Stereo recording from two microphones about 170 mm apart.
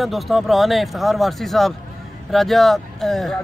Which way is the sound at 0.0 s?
Centre (ahead or behind).